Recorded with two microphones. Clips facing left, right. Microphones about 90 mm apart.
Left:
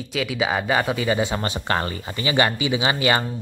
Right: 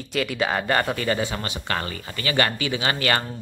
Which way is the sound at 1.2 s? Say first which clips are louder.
Left 4 dB; 25° left (ahead or behind).